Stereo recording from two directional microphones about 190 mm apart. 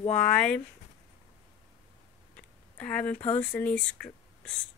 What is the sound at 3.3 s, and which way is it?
Speech, 10° left (ahead or behind).